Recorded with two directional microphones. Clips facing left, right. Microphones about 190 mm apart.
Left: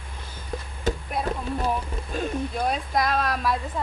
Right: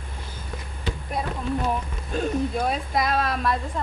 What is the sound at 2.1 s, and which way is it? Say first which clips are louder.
Speech: right 4 dB; centre (ahead or behind).